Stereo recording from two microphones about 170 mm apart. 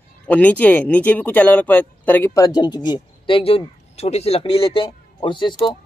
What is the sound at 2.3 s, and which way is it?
Speech, 20° left (ahead or behind).